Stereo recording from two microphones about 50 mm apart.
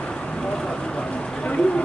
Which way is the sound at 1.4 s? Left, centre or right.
Left.